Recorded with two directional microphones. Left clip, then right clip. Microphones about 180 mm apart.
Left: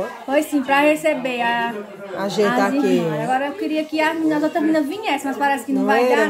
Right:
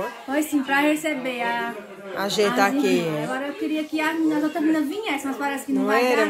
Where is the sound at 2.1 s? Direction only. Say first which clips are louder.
Left 2 dB; 5° left (ahead or behind).